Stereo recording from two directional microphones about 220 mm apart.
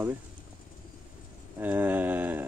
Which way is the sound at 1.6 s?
10° right (ahead or behind).